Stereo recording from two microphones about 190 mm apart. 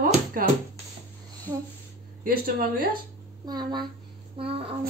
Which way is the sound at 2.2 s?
50° right (ahead or behind).